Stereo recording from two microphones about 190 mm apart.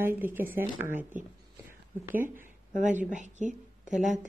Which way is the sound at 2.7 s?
40° right (ahead or behind).